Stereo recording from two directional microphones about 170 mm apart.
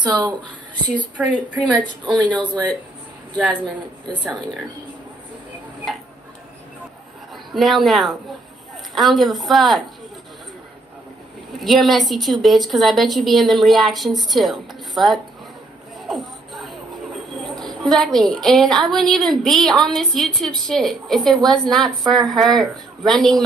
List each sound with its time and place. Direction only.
0.0 s speech: 25° right (ahead or behind)
1.2 s a woman's voice: 5° right (ahead or behind)
2.0 s speech: 25° right (ahead or behind)
7.5 s a woman's voice: centre (ahead or behind)
11.6 s a woman's voice: centre (ahead or behind)
16.1 s a sound: centre (ahead or behind)
17.6 s a woman's voice: centre (ahead or behind)